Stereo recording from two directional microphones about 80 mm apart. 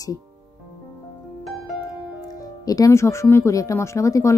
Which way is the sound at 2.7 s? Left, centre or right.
Left.